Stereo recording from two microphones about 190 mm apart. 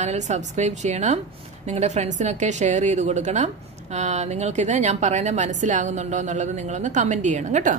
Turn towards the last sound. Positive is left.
turn(degrees=-40)  # may be behind; listen again after turning